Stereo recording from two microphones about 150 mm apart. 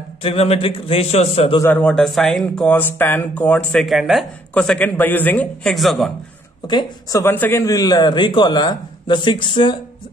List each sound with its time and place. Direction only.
0.2 s a man's voice: 40° left (ahead or behind)
1.6 s speech: 10° left (ahead or behind)
6.7 s a man's voice: 20° left (ahead or behind)